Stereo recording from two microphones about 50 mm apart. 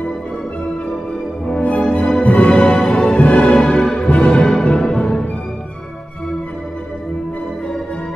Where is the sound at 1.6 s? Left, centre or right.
Left.